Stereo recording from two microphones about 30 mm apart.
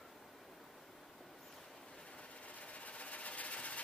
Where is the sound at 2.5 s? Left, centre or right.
Left.